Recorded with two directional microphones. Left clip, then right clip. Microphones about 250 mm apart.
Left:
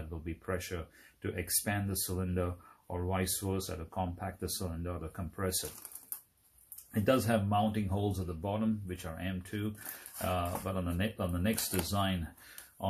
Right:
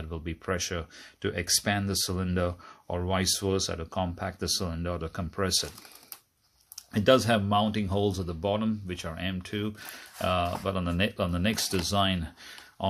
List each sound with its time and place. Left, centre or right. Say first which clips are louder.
0.1 s speech: right 6 dB; right
6.9 s speech: right 7 dB; right